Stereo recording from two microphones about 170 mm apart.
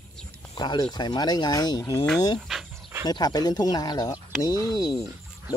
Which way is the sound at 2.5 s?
Centre (ahead or behind).